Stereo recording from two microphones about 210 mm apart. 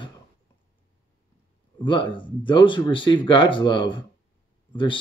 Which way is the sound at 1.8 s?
25° left (ahead or behind).